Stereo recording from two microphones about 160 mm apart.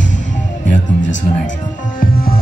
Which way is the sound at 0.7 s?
50° left (ahead or behind).